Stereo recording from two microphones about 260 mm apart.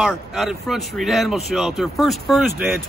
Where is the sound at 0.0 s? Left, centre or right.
Centre.